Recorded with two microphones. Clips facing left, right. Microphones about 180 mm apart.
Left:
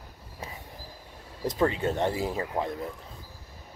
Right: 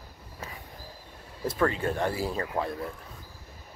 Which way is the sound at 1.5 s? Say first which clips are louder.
Left 1 dB; 20° left (ahead or behind).